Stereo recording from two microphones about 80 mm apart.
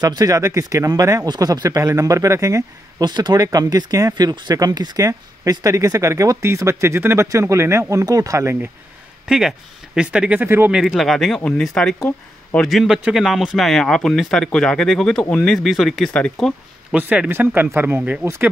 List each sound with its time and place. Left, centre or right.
0.0 s speech: right
1.8 s speech: right
3.0 s speech: right
3.4 s speech: right
7.9 s speech: right
9.3 s speech: centre
10.4 s speech: right
11.0 s speech: centre
16.9 s speech: centre